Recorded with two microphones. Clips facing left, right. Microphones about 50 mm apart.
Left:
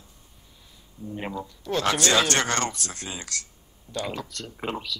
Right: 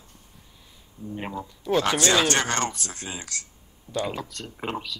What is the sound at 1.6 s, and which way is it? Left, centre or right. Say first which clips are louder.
Speech: right 2 dB; centre.